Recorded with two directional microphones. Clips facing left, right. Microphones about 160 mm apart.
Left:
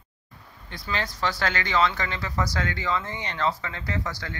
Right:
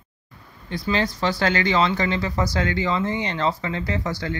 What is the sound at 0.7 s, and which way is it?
Speech, 25° right (ahead or behind).